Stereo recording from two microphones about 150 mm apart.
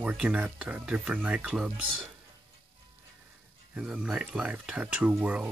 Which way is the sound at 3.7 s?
5° right (ahead or behind).